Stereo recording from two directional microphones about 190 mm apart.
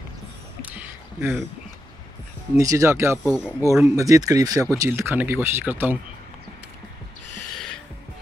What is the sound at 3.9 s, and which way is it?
Speech, 15° right (ahead or behind).